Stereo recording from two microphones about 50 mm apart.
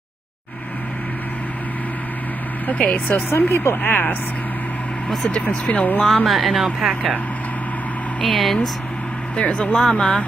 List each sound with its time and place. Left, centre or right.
2.6 s speech: left
3.3 s speech: left
5.4 s speech: left
6.0 s speech: centre
6.9 s speech: centre
8.2 s speech: centre
9.4 s speech: left
9.8 s speech: centre